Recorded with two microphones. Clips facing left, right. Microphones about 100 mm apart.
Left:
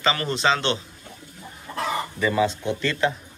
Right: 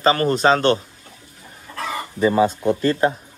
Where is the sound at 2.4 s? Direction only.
45° right (ahead or behind).